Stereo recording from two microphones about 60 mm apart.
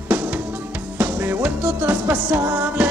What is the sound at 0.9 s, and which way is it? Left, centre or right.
Music, right.